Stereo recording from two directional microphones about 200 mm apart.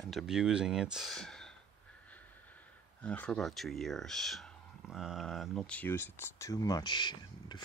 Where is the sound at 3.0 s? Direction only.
5° left (ahead or behind).